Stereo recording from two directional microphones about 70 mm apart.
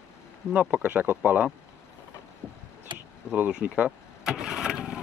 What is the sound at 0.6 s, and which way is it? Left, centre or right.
Speech, right.